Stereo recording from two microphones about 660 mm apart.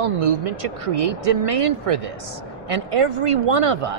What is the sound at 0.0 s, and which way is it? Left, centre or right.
Speech, right.